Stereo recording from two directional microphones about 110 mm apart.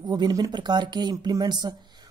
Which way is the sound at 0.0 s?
40° right (ahead or behind).